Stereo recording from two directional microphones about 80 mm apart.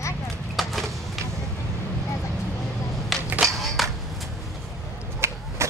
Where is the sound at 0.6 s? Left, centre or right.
Centre.